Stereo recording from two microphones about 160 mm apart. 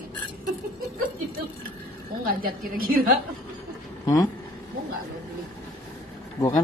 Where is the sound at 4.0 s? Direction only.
25° left (ahead or behind).